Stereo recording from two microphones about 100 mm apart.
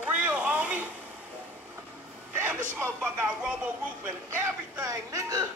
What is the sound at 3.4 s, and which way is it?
A woman's voice, 10° right (ahead or behind).